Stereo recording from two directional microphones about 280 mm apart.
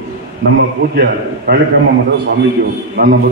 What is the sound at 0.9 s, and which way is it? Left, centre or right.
A man's voice, right.